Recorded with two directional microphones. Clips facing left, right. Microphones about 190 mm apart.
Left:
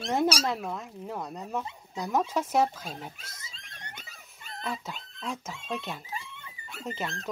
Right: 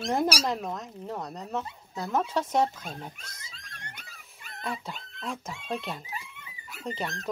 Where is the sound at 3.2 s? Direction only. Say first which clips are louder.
Even; 25° left (ahead or behind).